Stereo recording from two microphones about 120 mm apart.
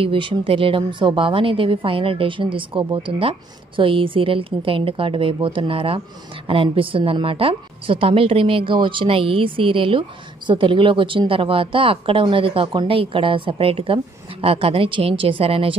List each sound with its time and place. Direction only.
0.0 s a woman's voice: 45° right (ahead or behind)